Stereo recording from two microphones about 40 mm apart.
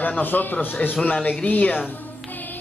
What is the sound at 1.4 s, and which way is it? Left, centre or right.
Speech, left.